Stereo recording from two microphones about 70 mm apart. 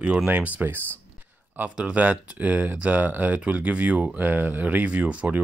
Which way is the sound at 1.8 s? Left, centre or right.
Centre.